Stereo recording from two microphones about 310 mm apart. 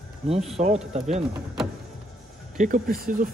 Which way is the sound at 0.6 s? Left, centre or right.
Centre.